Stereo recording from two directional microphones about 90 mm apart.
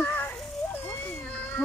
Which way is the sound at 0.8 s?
25° left (ahead or behind).